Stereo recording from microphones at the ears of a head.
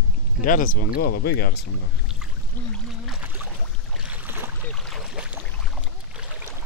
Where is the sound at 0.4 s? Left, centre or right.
Left.